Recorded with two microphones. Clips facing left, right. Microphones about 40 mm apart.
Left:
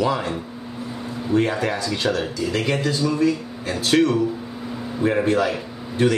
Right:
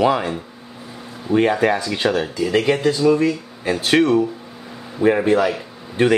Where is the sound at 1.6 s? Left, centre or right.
Centre.